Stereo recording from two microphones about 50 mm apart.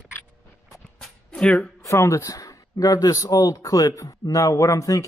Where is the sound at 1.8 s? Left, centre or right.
Left.